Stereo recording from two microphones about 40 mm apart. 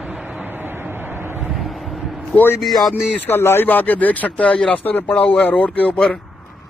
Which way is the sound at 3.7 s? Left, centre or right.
Left.